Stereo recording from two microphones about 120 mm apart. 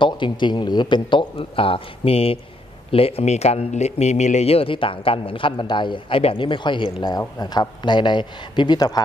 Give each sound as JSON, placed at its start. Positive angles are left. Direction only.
{"t": 0.0, "sound": "speech", "side_deg": 40}